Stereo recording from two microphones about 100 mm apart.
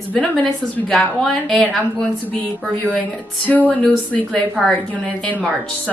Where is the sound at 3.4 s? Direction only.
15° left (ahead or behind).